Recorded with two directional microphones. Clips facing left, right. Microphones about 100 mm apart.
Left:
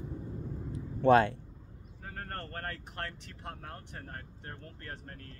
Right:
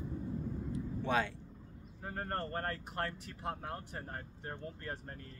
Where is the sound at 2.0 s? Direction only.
15° right (ahead or behind).